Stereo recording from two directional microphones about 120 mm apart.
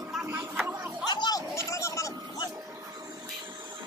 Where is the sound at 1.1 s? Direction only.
35° left (ahead or behind).